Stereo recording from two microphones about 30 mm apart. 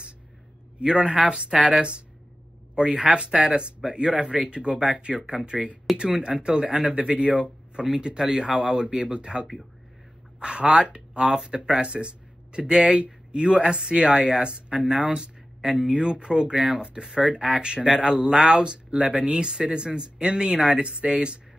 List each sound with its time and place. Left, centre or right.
0.7 s speech: right
4.1 s speech: right
4.5 s speech: right
14.9 s speech: right
17.0 s speech: centre
17.3 s speech: right
19.3 s speech: right
21.0 s speech: right